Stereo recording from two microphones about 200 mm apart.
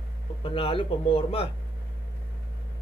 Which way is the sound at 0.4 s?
25° left (ahead or behind).